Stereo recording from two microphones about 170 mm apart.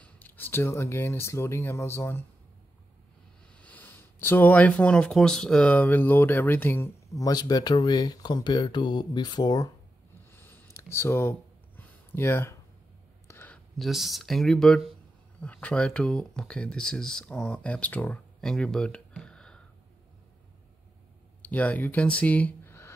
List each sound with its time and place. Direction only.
0.0 s speech: 10° left (ahead or behind)
3.5 s speech: 10° left (ahead or behind)
10.3 s a sound: 10° left (ahead or behind)
13.7 s speech: centre (ahead or behind)
21.4 s speech: 10° left (ahead or behind)